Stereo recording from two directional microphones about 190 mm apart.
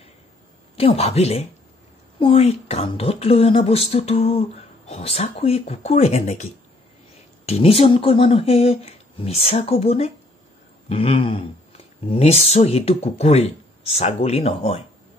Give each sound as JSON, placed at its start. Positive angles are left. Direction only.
{"t": 0.7, "sound": "a woman's voice", "side_deg": 30}